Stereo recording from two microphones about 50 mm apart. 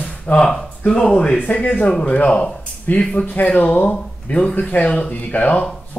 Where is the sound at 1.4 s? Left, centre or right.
Left.